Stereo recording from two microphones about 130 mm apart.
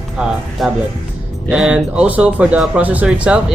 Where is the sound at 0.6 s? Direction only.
Centre (ahead or behind).